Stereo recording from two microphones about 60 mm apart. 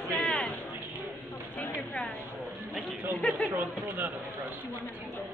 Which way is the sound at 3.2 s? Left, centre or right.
Centre.